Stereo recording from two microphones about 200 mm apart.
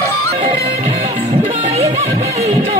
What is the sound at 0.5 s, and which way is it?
Music, 20° right (ahead or behind).